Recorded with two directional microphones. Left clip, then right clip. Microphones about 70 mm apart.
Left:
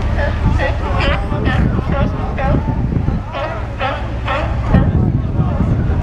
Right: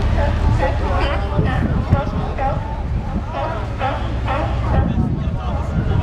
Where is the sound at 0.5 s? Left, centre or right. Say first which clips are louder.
Left 1 dB; left.